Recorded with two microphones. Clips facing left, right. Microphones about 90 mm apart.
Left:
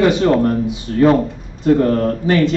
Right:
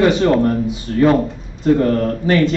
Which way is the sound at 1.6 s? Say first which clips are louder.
Left 1 dB; 35° left (ahead or behind).